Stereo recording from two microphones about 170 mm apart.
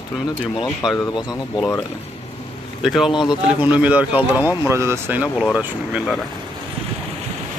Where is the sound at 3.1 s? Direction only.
25° left (ahead or behind).